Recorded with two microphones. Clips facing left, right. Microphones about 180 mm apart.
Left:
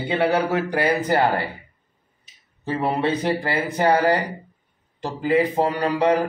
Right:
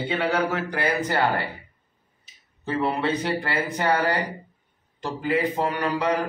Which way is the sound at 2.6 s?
30° left (ahead or behind).